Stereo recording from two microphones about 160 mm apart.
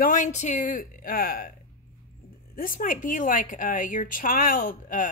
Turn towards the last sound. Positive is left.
turn(degrees=60)  # may be behind; listen again after turning